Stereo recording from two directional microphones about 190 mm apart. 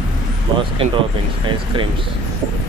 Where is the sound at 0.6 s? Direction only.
25° right (ahead or behind).